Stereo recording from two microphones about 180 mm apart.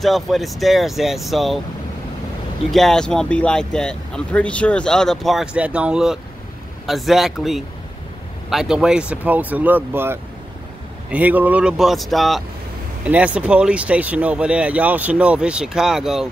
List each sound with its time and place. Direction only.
0.0 s speech: centre (ahead or behind)
2.7 s speech: centre (ahead or behind)